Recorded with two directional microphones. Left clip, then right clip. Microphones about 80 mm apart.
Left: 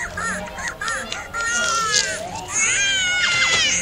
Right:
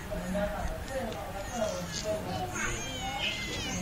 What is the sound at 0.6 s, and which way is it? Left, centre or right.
Honk, left.